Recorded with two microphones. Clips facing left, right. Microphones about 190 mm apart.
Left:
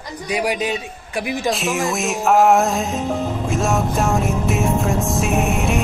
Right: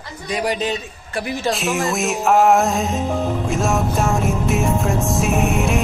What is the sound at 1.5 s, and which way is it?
Music, centre (ahead or behind).